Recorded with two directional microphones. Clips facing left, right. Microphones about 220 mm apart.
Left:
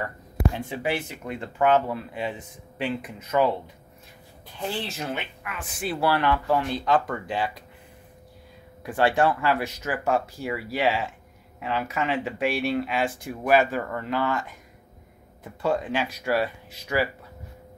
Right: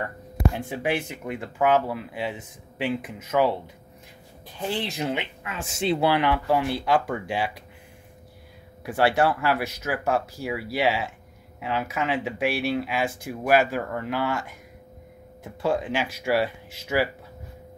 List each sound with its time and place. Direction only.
0.7 s speech: 15° right (ahead or behind)
4.6 s speech: 15° right (ahead or behind)
8.8 s speech: 10° right (ahead or behind)
15.4 s speech: 10° right (ahead or behind)